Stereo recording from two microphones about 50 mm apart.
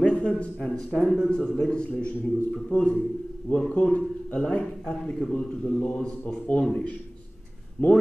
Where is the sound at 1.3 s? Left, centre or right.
Centre.